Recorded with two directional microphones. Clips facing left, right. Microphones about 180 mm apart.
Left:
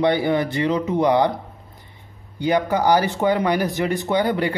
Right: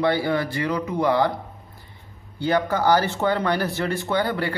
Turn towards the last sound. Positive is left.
turn(degrees=15)  # may be behind; listen again after turning